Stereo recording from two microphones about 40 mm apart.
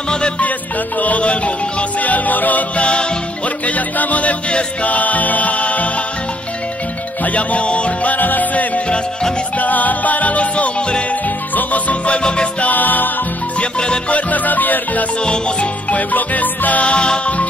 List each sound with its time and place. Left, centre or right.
0.9 s music: left
2.8 s music: left
7.2 s music: left
11.2 s music: left
12.2 s music: left
12.5 s music: left
13.6 s music: left
14.1 s music: left
15.2 s music: left
16.0 s music: left
16.9 s music: left